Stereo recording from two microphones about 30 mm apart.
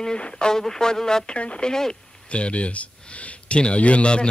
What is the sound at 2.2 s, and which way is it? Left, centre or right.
Speech, left.